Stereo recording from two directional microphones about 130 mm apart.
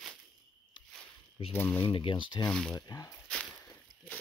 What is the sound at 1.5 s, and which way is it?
Speech, 20° left (ahead or behind).